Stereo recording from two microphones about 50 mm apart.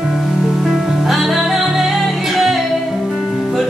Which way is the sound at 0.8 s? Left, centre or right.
Centre.